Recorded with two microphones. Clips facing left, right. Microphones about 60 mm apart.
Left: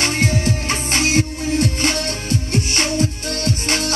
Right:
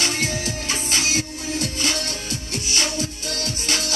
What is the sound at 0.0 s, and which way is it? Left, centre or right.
Music, left.